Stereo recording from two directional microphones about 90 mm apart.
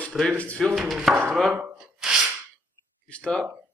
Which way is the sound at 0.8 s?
Centre (ahead or behind).